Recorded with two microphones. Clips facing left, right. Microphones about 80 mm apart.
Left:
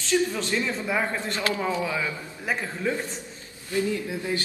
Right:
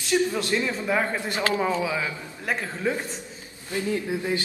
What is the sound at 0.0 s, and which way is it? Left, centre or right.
Speech, centre.